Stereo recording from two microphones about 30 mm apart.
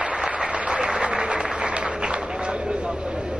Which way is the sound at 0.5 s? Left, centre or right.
Right.